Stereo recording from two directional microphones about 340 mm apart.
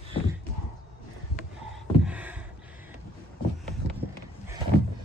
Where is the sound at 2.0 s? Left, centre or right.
Centre.